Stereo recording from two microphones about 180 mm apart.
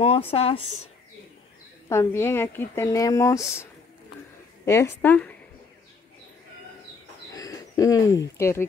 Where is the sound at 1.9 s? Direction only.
15° left (ahead or behind).